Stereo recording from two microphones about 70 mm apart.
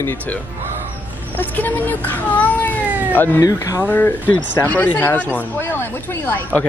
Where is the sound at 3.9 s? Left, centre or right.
Left.